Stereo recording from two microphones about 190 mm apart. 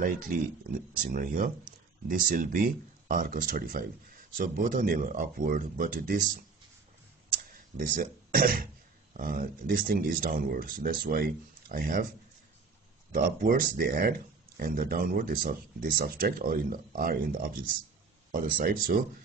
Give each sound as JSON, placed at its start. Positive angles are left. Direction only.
{"t": 0.0, "sound": "speech", "side_deg": -45}
{"t": 7.7, "sound": "speech", "side_deg": -50}
{"t": 13.1, "sound": "speech", "side_deg": -50}